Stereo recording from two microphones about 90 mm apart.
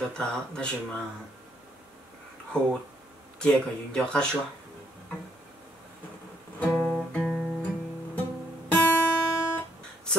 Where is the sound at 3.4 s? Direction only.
10° left (ahead or behind).